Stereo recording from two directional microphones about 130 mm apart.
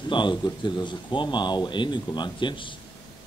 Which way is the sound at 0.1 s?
35° left (ahead or behind).